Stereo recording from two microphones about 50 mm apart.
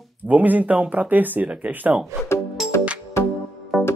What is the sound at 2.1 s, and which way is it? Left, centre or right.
Speech, right.